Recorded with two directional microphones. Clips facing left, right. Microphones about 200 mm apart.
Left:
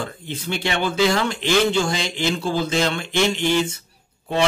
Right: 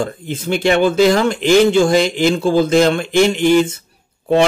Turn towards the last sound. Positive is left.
turn(degrees=-50)  # may be behind; listen again after turning